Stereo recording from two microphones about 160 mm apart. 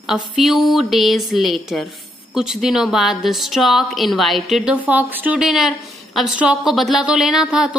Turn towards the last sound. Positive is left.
turn(degrees=-5)  # may be behind; listen again after turning